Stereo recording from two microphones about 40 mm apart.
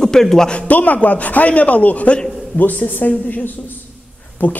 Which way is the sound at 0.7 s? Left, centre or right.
Left.